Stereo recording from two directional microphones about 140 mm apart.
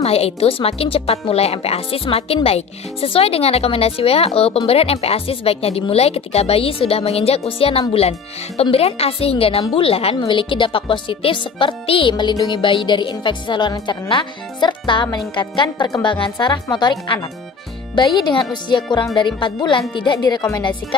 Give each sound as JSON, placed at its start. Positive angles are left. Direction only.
{"t": 0.0, "sound": "a woman's voice", "side_deg": 45}
{"t": 17.9, "sound": "a woman's voice", "side_deg": 30}